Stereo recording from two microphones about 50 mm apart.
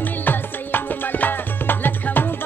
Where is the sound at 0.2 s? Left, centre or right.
Left.